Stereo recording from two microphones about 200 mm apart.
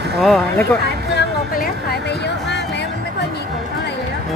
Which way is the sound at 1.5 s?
50° left (ahead or behind).